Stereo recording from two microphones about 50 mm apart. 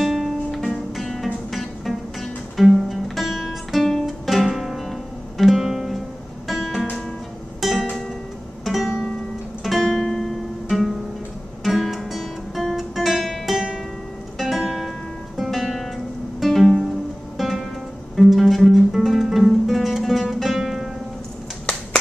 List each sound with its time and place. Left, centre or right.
0.0 s music: centre
15.3 s guitar: centre
16.3 s music: centre
21.7 s a sound: centre